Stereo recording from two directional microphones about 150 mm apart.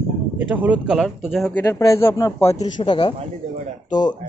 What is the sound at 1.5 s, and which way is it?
Speech, 20° left (ahead or behind).